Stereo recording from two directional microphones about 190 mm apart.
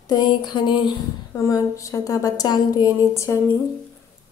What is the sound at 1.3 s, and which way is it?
Speech, 15° left (ahead or behind).